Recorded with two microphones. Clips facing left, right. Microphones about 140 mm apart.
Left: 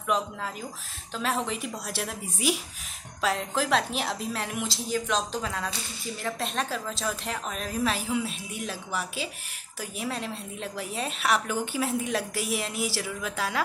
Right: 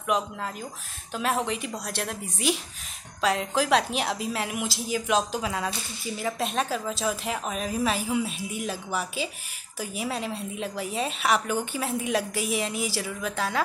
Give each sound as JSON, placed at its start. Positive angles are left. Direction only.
{"t": 1.1, "sound": "a woman's voice", "side_deg": -5}